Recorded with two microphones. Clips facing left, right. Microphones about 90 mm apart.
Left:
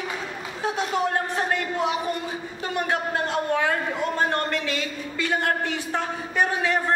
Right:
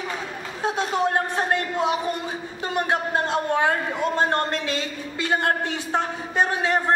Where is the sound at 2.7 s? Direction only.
20° right (ahead or behind).